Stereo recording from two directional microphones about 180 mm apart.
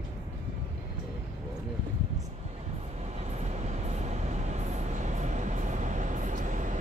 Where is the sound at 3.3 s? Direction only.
40° right (ahead or behind).